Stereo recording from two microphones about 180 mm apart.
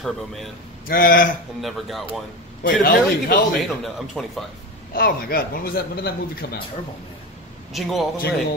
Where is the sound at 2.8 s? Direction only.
55° left (ahead or behind).